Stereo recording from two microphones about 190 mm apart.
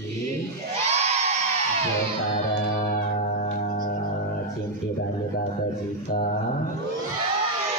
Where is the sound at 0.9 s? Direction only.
35° right (ahead or behind).